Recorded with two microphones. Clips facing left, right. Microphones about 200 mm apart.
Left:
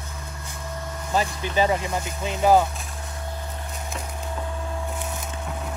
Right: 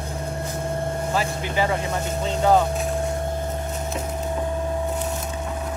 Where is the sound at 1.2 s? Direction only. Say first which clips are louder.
Left 3 dB; 20° left (ahead or behind).